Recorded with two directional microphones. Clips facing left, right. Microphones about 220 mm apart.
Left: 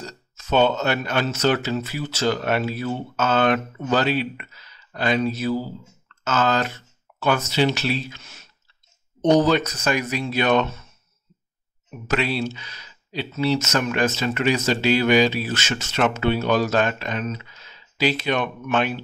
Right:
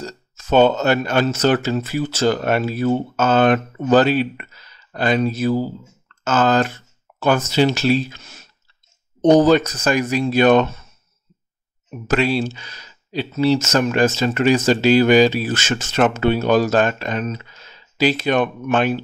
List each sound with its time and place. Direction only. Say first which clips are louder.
0.0 s speech: right 5 dB; 45° right (ahead or behind)
12.1 s speech: right 5 dB; 45° right (ahead or behind)